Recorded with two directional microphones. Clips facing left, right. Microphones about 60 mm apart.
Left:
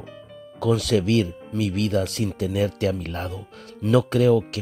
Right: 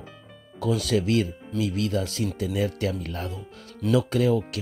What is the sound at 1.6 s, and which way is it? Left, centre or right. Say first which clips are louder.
Speech: left 3 dB; left.